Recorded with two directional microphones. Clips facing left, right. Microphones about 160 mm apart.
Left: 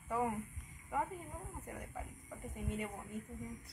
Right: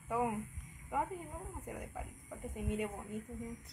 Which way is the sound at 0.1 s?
10° right (ahead or behind).